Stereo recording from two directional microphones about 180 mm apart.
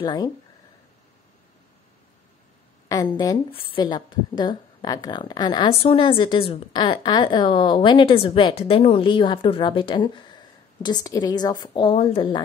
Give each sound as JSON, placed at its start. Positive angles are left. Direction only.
{"t": 0.0, "sound": "a woman's voice", "side_deg": 20}
{"t": 2.9, "sound": "a woman's voice", "side_deg": 20}